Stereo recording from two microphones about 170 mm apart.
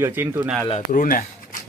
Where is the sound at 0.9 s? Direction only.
55° left (ahead or behind).